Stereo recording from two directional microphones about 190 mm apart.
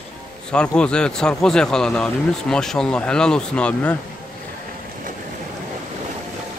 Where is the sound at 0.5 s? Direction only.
5° left (ahead or behind).